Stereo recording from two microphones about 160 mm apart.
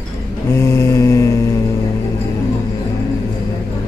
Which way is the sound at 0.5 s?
15° left (ahead or behind).